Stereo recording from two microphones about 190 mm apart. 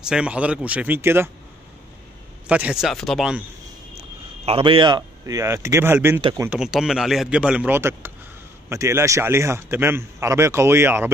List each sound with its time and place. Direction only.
0.0 s speech: 5° right (ahead or behind)
2.4 s speech: 5° right (ahead or behind)
4.5 s speech: 30° right (ahead or behind)
6.5 s speech: 5° right (ahead or behind)